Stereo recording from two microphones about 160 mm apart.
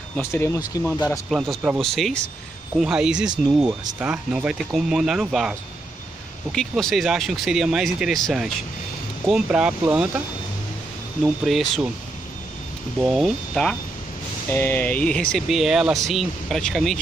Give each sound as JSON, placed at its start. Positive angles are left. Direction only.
{"t": 0.2, "sound": "speech", "side_deg": 15}
{"t": 1.3, "sound": "speech", "side_deg": 0}
{"t": 11.2, "sound": "speech", "side_deg": 0}
{"t": 13.0, "sound": "speech", "side_deg": 0}